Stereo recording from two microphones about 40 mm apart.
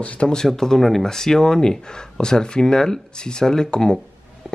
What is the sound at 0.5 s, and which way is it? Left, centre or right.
Speech, centre.